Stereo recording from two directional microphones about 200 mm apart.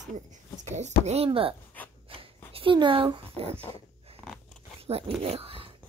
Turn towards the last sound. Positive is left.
turn(degrees=-25)  # may be behind; listen again after turning